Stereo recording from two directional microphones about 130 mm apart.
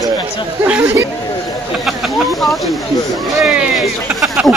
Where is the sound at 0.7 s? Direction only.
15° right (ahead or behind).